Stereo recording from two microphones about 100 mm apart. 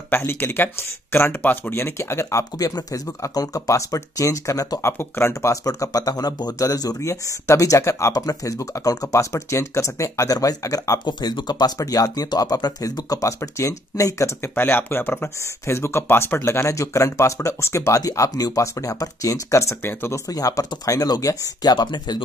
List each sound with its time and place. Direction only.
0.1 s speech: 25° left (ahead or behind)
11.1 s speech: 45° left (ahead or behind); by 20.2 s 25° left (ahead or behind)
20.2 s speech: 35° left (ahead or behind)